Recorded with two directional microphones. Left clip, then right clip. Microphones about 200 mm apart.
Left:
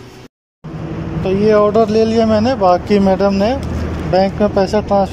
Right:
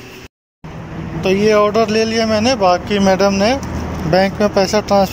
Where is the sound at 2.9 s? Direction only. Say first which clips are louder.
Left 1 dB; 20° left (ahead or behind).